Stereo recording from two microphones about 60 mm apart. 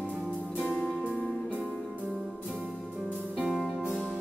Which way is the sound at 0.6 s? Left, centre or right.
Left.